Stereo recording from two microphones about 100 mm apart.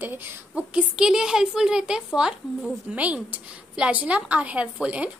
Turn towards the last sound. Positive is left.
turn(degrees=-10)  # may be behind; listen again after turning